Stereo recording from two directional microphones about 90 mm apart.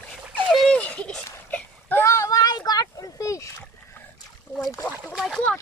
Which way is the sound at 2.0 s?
35° left (ahead or behind).